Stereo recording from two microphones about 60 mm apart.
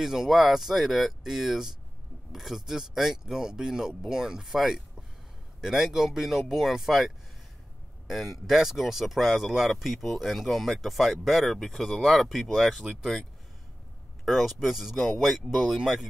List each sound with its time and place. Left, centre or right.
0.0 s speech: centre
14.2 s speech: centre